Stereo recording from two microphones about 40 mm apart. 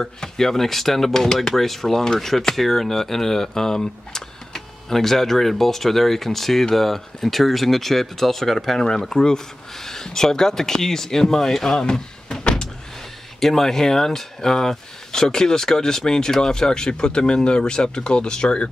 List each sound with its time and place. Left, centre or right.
0.0 s speech: centre